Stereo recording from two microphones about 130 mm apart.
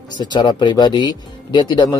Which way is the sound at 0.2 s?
35° left (ahead or behind).